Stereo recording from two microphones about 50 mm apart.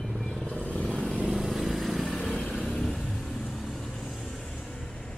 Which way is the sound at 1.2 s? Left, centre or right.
Centre.